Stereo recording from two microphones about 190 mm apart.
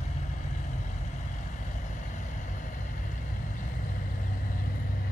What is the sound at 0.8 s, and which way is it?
Vehicle, 40° left (ahead or behind).